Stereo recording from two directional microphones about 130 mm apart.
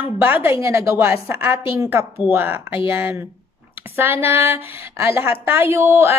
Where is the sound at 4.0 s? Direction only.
15° right (ahead or behind).